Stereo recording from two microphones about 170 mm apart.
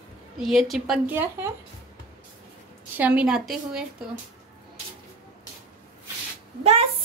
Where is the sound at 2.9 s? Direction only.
10° right (ahead or behind).